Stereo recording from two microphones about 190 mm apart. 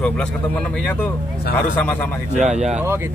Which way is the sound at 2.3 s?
35° right (ahead or behind).